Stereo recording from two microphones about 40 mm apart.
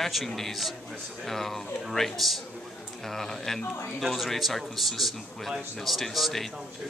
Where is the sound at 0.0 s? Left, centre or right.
Centre.